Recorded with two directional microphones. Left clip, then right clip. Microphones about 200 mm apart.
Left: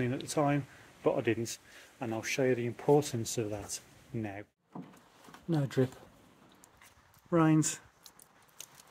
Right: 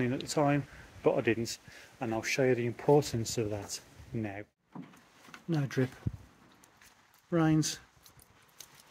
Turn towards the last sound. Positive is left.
turn(degrees=-5)  # may be behind; listen again after turning